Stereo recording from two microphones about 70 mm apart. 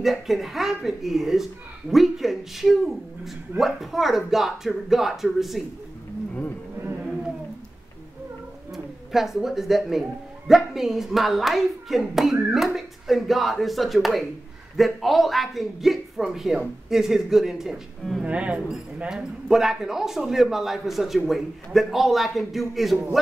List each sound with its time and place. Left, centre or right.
0.0 s speech: centre
8.7 s speech: centre
18.2 s speech: centre